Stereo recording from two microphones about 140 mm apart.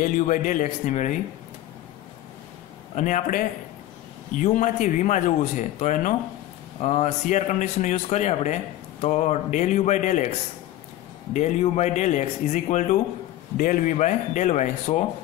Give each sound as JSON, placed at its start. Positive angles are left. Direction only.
{"t": 0.0, "sound": "speech", "side_deg": 75}
{"t": 0.7, "sound": "speech", "side_deg": 60}
{"t": 3.0, "sound": "speech", "side_deg": 70}
{"t": 11.3, "sound": "speech", "side_deg": 55}
{"t": 13.6, "sound": "speech", "side_deg": 75}